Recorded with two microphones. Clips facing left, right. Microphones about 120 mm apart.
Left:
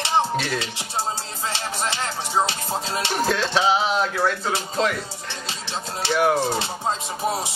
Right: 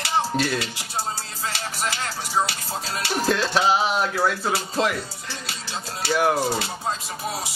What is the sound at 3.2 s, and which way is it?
Speech, centre (ahead or behind).